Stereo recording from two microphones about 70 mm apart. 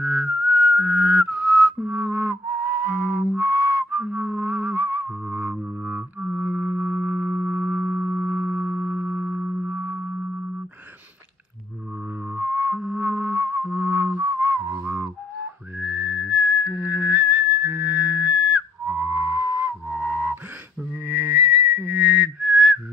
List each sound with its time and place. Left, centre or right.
0.0 s whistling: centre
1.8 s music: right
12.4 s music: right
12.8 s whistling: right
20.0 s music: right
21.1 s whistling: right